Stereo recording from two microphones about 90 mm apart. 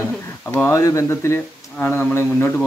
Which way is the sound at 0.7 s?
35° left (ahead or behind).